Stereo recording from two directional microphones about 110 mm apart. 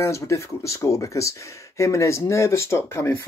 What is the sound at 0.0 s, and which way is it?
Speech, 25° left (ahead or behind).